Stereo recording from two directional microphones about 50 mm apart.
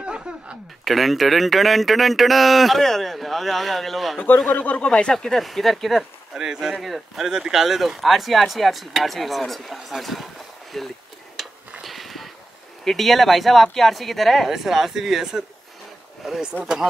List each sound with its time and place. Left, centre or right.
0.0 s a sound: right
0.8 s speech: centre
4.5 s speech: left
5.1 s speech: centre
6.3 s speech: centre
11.8 s a sound: centre
12.8 s speech: centre
14.5 s speech: centre